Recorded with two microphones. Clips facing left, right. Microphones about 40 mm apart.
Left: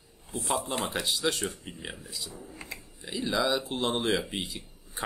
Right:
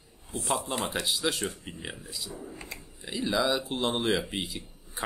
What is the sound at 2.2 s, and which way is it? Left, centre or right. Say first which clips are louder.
Speech: right 4 dB; right.